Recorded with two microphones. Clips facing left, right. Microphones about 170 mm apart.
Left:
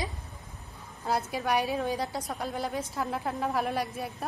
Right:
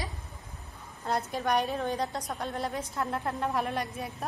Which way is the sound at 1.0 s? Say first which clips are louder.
Even; 5° left (ahead or behind).